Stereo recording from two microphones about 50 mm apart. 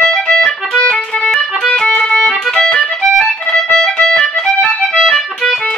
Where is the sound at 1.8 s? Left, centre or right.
Centre.